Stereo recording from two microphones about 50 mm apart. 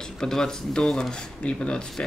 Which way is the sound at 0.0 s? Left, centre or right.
Centre.